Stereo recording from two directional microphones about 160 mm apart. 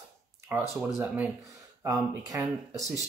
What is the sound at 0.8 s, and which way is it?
Speech, 15° right (ahead or behind).